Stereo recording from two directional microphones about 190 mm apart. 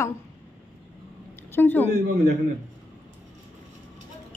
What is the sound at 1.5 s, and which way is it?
Speech, 10° left (ahead or behind).